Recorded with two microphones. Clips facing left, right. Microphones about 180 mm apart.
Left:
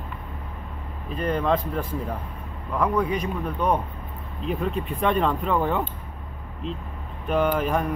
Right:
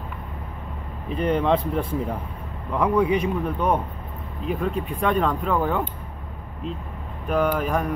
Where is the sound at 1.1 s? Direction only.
20° right (ahead or behind); by 5.8 s 5° right (ahead or behind).